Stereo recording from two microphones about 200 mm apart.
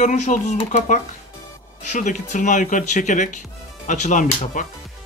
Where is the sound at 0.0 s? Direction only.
35° left (ahead or behind).